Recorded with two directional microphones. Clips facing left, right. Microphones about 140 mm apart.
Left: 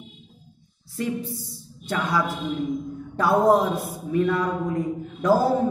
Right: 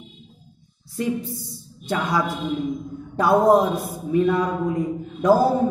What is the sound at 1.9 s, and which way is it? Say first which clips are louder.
Speech: right 2 dB; 15° right (ahead or behind).